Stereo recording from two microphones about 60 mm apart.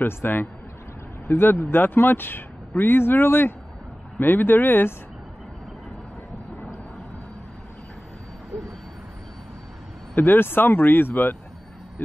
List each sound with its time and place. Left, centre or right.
0.0 s speech: left
10.1 s speech: left